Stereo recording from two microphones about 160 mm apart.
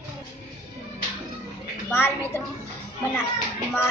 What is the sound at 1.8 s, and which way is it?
Speech, 15° left (ahead or behind).